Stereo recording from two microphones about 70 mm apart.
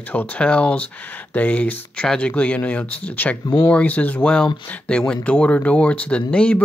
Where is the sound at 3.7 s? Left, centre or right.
Left.